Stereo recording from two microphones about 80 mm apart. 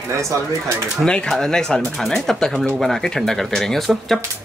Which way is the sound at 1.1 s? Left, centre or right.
Centre.